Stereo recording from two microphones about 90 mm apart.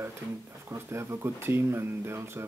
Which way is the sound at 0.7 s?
30° right (ahead or behind).